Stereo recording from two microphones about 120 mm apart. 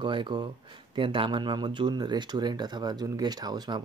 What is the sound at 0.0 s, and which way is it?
Speech, 40° right (ahead or behind).